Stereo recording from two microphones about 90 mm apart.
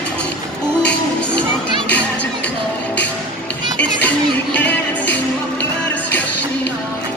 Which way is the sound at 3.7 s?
15° left (ahead or behind).